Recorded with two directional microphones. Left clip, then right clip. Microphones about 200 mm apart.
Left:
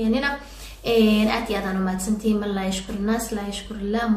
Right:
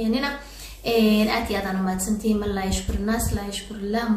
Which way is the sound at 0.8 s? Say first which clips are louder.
Left 1 dB; 10° left (ahead or behind).